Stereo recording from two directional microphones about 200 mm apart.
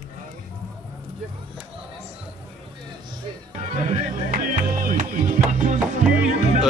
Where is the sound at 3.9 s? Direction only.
40° right (ahead or behind).